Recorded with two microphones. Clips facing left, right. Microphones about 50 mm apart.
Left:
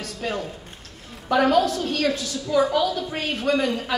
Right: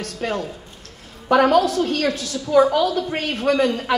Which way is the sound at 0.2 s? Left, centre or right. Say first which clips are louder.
Right 3 dB; right.